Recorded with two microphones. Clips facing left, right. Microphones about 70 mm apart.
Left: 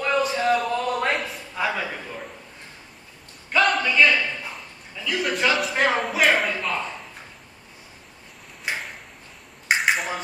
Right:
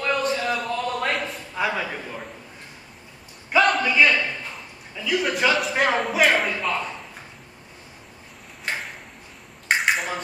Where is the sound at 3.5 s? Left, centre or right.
Centre.